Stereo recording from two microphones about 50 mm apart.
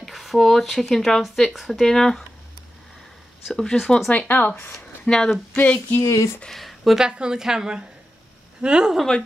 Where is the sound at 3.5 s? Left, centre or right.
Centre.